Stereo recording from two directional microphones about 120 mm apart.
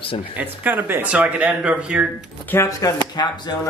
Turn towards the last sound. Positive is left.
turn(degrees=35)  # may be behind; listen again after turning